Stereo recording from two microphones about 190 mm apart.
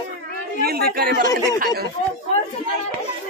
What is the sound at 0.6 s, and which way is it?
Speech, 55° right (ahead or behind).